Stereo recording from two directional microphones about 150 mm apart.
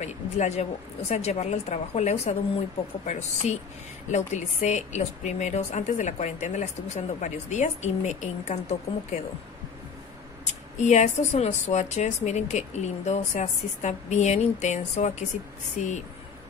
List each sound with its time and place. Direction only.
0.0 s a woman's voice: 50° left (ahead or behind)
10.4 s a woman's voice: 50° left (ahead or behind)